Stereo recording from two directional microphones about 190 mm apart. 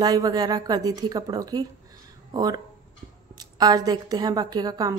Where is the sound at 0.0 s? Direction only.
20° right (ahead or behind).